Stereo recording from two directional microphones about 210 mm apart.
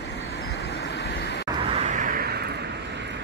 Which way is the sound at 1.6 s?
30° right (ahead or behind).